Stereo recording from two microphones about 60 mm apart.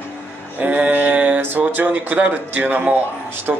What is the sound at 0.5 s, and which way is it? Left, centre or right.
A man's voice, right.